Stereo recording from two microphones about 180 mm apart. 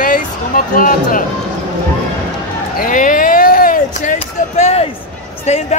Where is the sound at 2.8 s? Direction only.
50° left (ahead or behind).